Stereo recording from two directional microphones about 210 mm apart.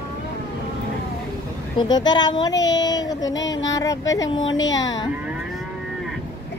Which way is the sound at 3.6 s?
15° left (ahead or behind).